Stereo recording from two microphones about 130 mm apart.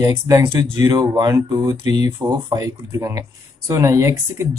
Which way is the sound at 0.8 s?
35° right (ahead or behind).